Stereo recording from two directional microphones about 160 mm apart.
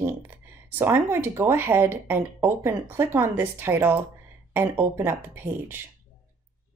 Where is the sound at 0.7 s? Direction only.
15° right (ahead or behind).